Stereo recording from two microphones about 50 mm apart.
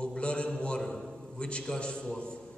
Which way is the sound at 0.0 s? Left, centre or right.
Centre.